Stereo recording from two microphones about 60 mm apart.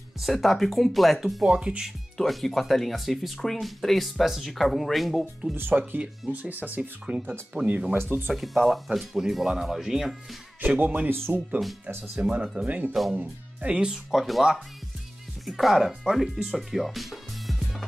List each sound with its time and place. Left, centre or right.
0.2 s speech: centre
2.1 s speech: centre
5.6 s speech: right
7.9 s speech: right
8.3 s speech: centre
10.6 s speech: right
12.2 s speech: right
14.1 s speech: centre